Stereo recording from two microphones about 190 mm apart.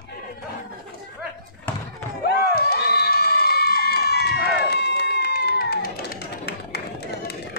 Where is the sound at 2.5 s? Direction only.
55° left (ahead or behind).